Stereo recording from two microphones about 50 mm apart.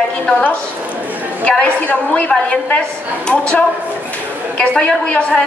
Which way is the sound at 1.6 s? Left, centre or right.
Left.